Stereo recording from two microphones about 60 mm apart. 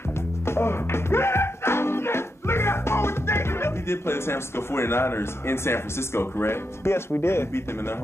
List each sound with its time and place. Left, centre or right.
0.5 s music: left